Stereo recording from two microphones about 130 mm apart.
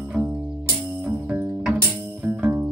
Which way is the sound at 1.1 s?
15° right (ahead or behind).